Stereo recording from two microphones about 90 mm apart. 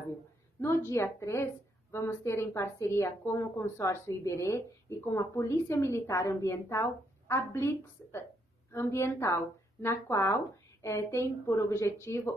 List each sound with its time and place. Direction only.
0.6 s a woman's voice: 30° left (ahead or behind)